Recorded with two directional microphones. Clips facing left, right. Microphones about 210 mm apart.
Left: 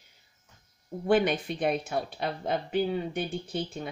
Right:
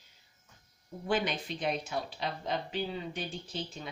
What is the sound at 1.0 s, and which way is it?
Speech, 55° left (ahead or behind).